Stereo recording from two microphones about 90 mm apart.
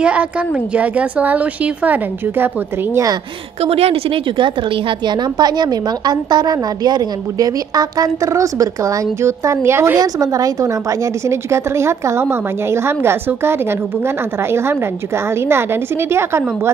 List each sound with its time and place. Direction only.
0.0 s a woman's voice: 15° right (ahead or behind)
3.6 s a woman's voice: 90° right; by 9.9 s 30° right (ahead or behind)
9.9 s a woman's voice: 40° right (ahead or behind)